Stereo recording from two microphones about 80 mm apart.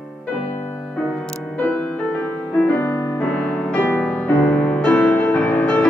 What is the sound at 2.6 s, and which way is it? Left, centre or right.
Music, left.